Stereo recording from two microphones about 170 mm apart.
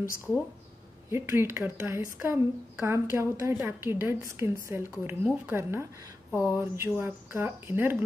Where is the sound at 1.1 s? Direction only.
15° right (ahead or behind).